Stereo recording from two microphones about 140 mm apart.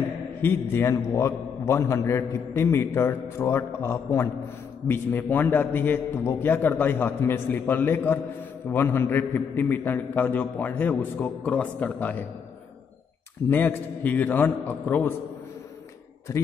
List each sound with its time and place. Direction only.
0.4 s a man's voice: 15° left (ahead or behind)
13.5 s a man's voice: 15° left (ahead or behind)